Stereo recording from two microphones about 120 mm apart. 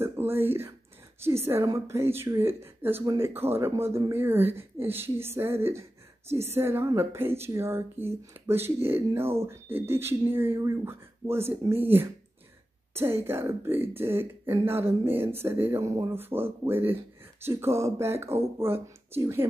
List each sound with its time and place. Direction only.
0.0 s speech: 20° right (ahead or behind)